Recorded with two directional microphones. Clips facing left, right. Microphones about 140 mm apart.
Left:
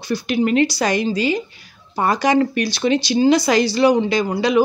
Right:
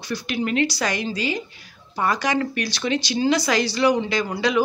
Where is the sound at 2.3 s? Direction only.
30° left (ahead or behind).